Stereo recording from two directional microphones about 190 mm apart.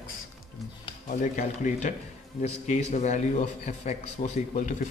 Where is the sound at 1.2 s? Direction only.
40° left (ahead or behind).